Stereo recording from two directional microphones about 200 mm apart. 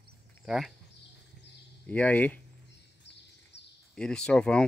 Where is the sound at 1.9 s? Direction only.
5° left (ahead or behind).